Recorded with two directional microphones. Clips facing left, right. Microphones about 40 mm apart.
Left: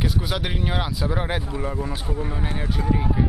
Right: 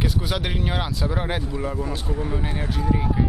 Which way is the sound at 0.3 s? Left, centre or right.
Centre.